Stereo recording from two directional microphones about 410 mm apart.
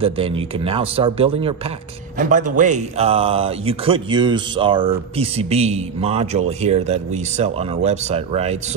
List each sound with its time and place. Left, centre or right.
0.0 s speech: centre